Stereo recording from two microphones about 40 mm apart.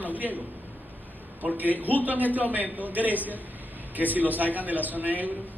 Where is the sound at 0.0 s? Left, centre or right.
Right.